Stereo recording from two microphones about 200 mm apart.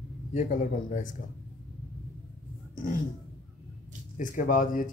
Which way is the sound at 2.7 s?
40° left (ahead or behind).